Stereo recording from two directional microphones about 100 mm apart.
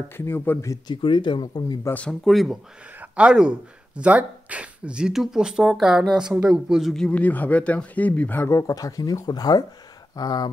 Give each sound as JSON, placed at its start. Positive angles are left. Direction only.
{"t": 0.2, "sound": "speech", "side_deg": 25}
{"t": 0.8, "sound": "speech", "side_deg": 50}
{"t": 2.0, "sound": "speech", "side_deg": 5}
{"t": 7.1, "sound": "speech", "side_deg": 15}
{"t": 8.5, "sound": "speech", "side_deg": 35}